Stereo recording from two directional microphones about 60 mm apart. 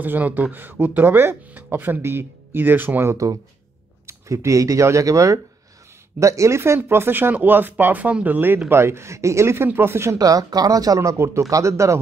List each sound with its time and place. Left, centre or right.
0.0 s speech: right
4.1 s speech: right
6.8 s speech: right
8.6 s speech: right
10.1 s speech: right
11.0 s speech: right